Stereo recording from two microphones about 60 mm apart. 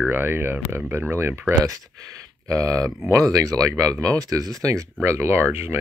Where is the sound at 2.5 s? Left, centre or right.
Right.